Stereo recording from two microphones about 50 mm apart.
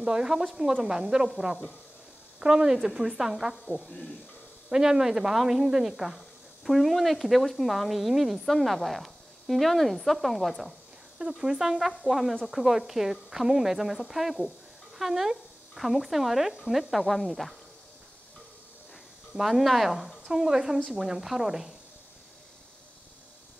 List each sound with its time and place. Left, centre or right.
0.0 s a woman's voice: centre
3.8 s speech: left
4.6 s speech: centre
11.1 s a woman's voice: centre
19.3 s a woman's voice: centre